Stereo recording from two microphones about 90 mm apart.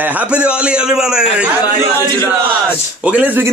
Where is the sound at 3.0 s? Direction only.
15° right (ahead or behind).